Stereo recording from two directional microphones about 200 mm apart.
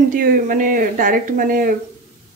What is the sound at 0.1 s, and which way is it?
Speech, 45° right (ahead or behind).